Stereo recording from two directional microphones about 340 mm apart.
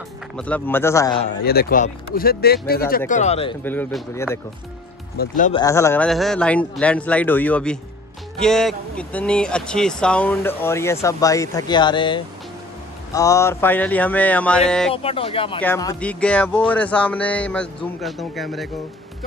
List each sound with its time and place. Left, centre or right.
0.4 s speech: centre
1.2 s speech: left
3.6 s speech: centre
5.1 s speech: left
5.6 s speech: centre
15.0 s speech: centre